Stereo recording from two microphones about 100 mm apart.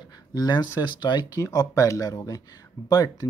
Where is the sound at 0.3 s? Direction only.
45° left (ahead or behind).